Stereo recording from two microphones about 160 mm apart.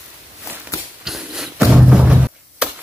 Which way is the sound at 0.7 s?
20° left (ahead or behind).